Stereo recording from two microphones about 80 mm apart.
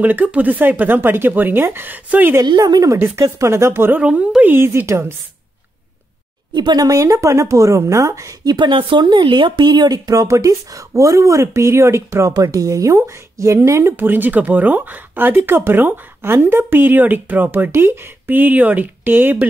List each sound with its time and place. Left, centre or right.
0.0 s speech: centre
2.4 s speech: right
3.0 s speech: right
4.0 s speech: centre
4.4 s speech: right
6.5 s speech: right
6.9 s speech: right
8.5 s speech: right
10.2 s speech: right